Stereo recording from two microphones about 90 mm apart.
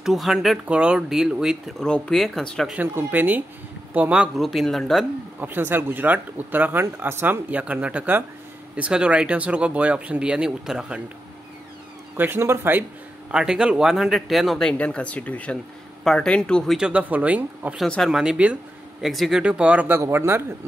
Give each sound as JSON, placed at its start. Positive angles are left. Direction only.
{"t": 0.0, "sound": "speech", "side_deg": -5}
{"t": 0.7, "sound": "speech", "side_deg": -10}
{"t": 1.8, "sound": "speech", "side_deg": 5}
{"t": 2.9, "sound": "speech", "side_deg": -20}
{"t": 4.4, "sound": "speech", "side_deg": 0}
{"t": 5.4, "sound": "speech", "side_deg": -20}
{"t": 12.2, "sound": "speech", "side_deg": -25}
{"t": 13.3, "sound": "speech", "side_deg": -10}
{"t": 16.0, "sound": "speech", "side_deg": 5}
{"t": 16.7, "sound": "speech", "side_deg": -10}
{"t": 17.8, "sound": "speech", "side_deg": 10}
{"t": 18.1, "sound": "speech", "side_deg": -5}
{"t": 19.4, "sound": "speech", "side_deg": -15}
{"t": 19.9, "sound": "speech", "side_deg": -25}